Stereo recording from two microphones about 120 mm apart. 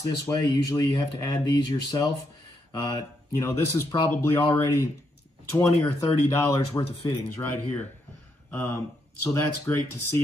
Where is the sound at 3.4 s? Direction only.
20° left (ahead or behind).